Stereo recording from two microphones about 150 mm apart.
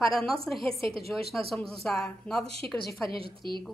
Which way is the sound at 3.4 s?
90° left.